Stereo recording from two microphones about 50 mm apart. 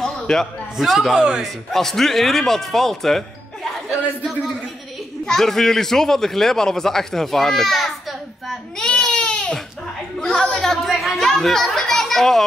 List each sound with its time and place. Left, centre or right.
0.0 s a sound: centre
0.7 s speech: centre
1.1 s speech: centre
1.4 s speech: centre
5.2 s a man's voice: centre
8.7 s baby cry: centre
10.2 s chatter: centre